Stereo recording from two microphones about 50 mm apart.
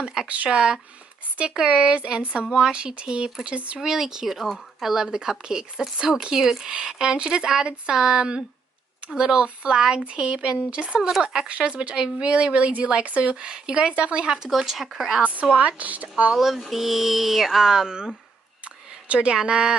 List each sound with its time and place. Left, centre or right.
0.0 s speech: centre
0.3 s a woman's voice: right
3.8 s speech: centre
4.9 s a woman's voice: centre
11.0 s speech: centre
11.3 s a woman's voice: right
14.3 s speech: centre
15.4 s a woman's voice: right
16.3 s a woman's voice: centre